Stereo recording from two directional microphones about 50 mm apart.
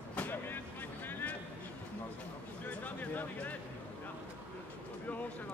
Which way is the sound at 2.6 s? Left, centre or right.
Left.